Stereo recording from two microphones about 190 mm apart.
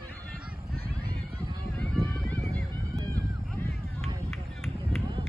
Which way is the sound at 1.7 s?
5° left (ahead or behind).